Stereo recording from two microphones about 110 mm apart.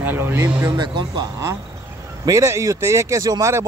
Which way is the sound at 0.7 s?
40° right (ahead or behind).